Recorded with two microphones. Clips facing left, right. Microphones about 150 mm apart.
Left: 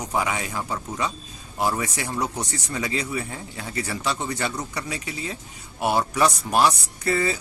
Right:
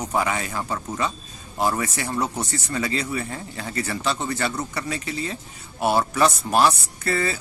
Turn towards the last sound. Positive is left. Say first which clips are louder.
# left 1 dB
turn(degrees=15)  # may be behind; listen again after turning